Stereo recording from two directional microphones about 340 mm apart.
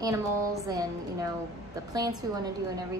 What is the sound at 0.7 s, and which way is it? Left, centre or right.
Speech, centre.